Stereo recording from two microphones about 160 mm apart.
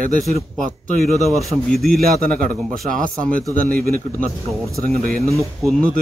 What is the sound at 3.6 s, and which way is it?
A man's voice, 65° right (ahead or behind).